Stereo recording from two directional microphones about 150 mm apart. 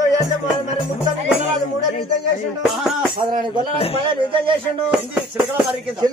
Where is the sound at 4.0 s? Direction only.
35° right (ahead or behind).